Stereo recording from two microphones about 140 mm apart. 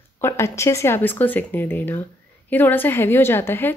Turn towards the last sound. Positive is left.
turn(degrees=15)  # may be behind; listen again after turning